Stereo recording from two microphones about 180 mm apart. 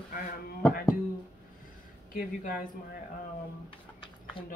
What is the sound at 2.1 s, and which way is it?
Speech, 55° left (ahead or behind).